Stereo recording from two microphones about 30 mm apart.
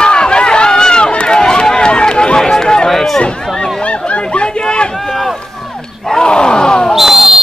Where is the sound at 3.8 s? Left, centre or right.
Left.